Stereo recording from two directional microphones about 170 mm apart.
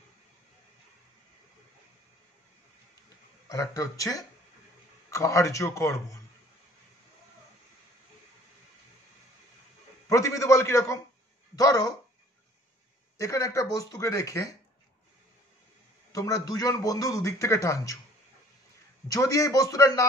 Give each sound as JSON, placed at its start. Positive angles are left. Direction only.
{"t": 3.4, "sound": "a man's voice", "side_deg": 20}
{"t": 10.0, "sound": "a man's voice", "side_deg": 20}
{"t": 13.2, "sound": "a man's voice", "side_deg": 20}
{"t": 16.1, "sound": "a man's voice", "side_deg": 20}
{"t": 19.0, "sound": "a man's voice", "side_deg": 20}